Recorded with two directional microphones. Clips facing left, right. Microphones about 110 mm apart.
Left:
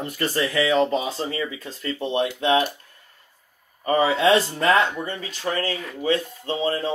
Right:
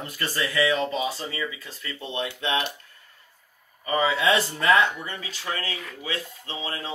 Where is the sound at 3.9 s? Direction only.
25° left (ahead or behind).